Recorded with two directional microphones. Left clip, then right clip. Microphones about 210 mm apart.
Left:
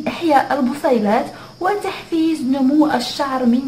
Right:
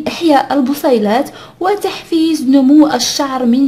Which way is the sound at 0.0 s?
40° right (ahead or behind).